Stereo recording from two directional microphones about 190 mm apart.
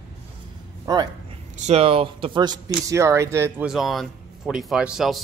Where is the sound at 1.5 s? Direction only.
35° right (ahead or behind); by 3.7 s 15° right (ahead or behind).